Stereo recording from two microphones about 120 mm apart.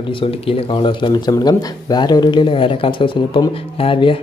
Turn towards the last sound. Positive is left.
turn(degrees=50)  # may be behind; listen again after turning